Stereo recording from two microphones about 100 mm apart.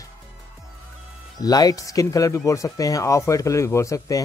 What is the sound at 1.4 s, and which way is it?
Speech, 40° left (ahead or behind).